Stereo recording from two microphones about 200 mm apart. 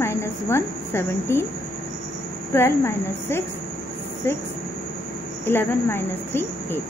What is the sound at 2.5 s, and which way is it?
Cricket, 10° left (ahead or behind).